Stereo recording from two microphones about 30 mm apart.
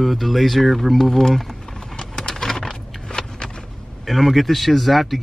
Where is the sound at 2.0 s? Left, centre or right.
Left.